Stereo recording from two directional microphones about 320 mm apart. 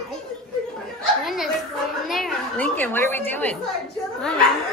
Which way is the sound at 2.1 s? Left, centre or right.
Centre.